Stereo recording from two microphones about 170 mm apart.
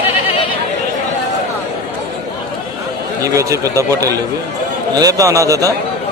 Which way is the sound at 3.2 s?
20° right (ahead or behind).